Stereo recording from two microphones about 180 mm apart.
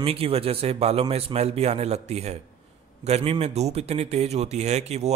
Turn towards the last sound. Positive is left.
turn(degrees=-35)  # may be behind; listen again after turning